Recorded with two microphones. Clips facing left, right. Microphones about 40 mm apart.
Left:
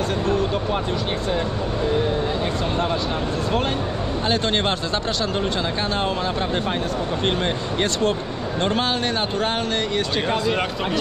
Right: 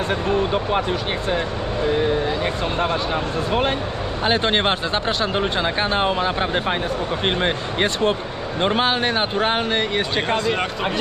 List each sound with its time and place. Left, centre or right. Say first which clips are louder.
0.1 s speech: right 4 dB; right
4.2 s speech: right 3 dB; right
10.3 s speech: right 1 dB; centre